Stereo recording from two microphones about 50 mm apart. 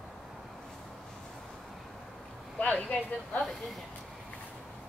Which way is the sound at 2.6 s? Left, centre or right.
Left.